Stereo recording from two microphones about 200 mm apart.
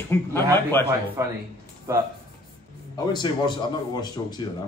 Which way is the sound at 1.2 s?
15° right (ahead or behind).